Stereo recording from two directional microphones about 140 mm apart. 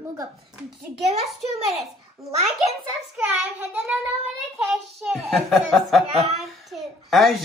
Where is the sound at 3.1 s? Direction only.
10° right (ahead or behind).